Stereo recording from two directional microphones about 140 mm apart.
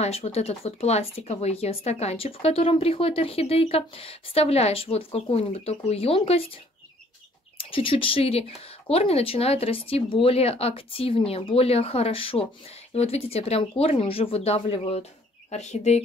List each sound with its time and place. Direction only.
0.0 s speech: 50° left (ahead or behind)
7.5 s speech: 40° left (ahead or behind)